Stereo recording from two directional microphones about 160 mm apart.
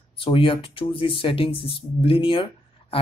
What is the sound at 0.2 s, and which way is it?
Speech, 35° left (ahead or behind).